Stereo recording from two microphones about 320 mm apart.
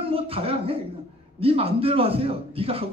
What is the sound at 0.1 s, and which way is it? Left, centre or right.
A man's voice, centre.